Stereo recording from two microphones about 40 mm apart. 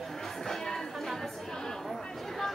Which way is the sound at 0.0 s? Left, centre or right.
Centre.